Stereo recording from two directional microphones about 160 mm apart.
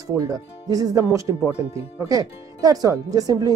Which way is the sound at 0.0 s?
20° right (ahead or behind).